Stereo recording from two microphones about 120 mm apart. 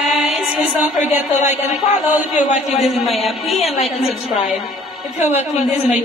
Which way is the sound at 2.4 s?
70° left (ahead or behind).